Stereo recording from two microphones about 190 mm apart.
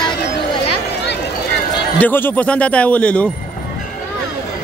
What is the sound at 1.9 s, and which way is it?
A man's voice, 10° left (ahead or behind).